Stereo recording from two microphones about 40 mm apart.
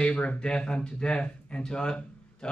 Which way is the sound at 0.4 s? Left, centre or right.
Left.